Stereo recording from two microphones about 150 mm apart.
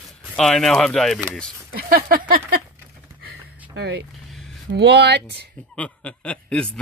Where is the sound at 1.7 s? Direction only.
70° right (ahead or behind).